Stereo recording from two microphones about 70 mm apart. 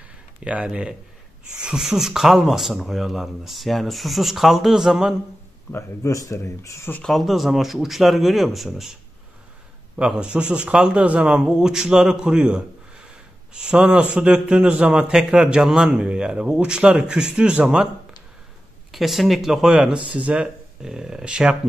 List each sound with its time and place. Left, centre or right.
0.4 s a man's voice: centre
5.7 s speech: left
7.0 s speech: centre
9.9 s a man's voice: centre
18.9 s a man's voice: centre
20.8 s a man's voice: centre